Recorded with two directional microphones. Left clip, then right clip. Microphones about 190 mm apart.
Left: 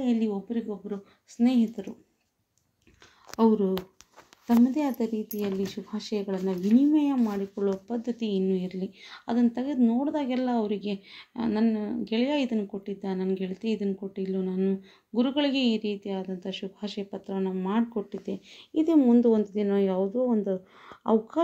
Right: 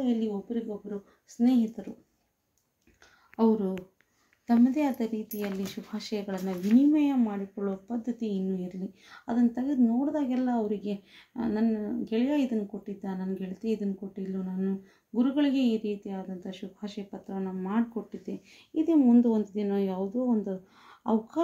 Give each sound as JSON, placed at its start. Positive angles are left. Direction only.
{"t": 0.0, "sound": "speech", "side_deg": 30}
{"t": 4.7, "sound": "speech", "side_deg": 15}